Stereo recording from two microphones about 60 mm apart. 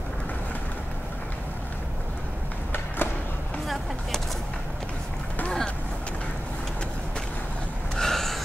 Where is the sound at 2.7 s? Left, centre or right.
Left.